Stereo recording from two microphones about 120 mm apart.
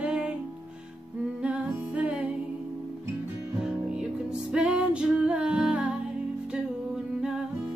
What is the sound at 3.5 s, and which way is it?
Music, 5° right (ahead or behind).